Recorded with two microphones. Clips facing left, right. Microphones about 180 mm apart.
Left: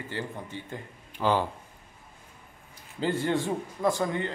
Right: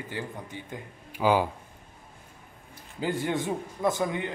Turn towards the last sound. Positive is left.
turn(degrees=-15)  # may be behind; listen again after turning